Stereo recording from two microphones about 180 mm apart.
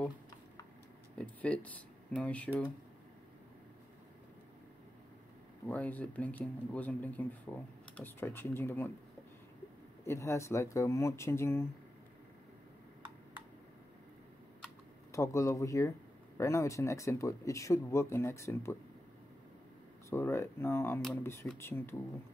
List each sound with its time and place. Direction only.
1.1 s speech: 5° left (ahead or behind)
5.7 s speech: 10° left (ahead or behind)
10.0 s speech: 15° left (ahead or behind)
15.1 s speech: 15° left (ahead or behind)
20.1 s speech: 15° left (ahead or behind)